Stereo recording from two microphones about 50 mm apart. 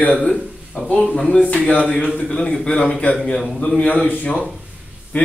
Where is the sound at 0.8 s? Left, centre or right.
Left.